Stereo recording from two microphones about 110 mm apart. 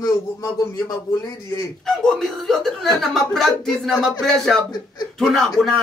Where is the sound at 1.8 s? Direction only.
5° left (ahead or behind).